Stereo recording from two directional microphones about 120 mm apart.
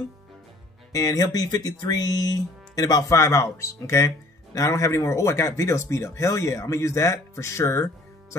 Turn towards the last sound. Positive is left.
turn(degrees=25)  # may be behind; listen again after turning